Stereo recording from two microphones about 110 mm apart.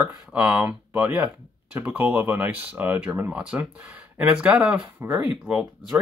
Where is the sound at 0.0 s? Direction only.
15° right (ahead or behind).